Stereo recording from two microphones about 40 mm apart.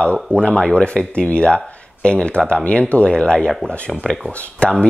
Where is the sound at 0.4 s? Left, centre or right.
Left.